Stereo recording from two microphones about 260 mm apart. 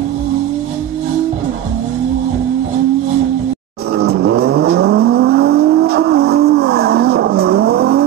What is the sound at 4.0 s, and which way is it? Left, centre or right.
Vehicle, right.